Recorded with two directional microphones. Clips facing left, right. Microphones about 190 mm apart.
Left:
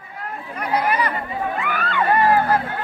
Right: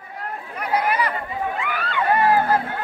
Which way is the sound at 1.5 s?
50° left (ahead or behind).